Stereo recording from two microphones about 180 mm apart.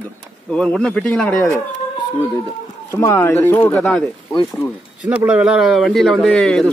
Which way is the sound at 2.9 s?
15° left (ahead or behind).